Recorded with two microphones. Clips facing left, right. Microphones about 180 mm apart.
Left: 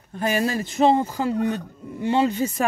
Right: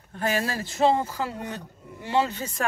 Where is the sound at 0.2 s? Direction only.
20° left (ahead or behind).